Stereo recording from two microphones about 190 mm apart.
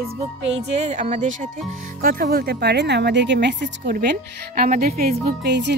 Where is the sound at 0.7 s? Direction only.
35° right (ahead or behind); by 3.9 s 65° right (ahead or behind).